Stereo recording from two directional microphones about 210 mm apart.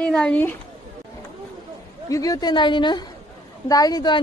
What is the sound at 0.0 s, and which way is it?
Speech, 5° left (ahead or behind).